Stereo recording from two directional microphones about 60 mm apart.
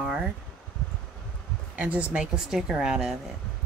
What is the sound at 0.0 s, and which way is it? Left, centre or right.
Rustling leaves, centre.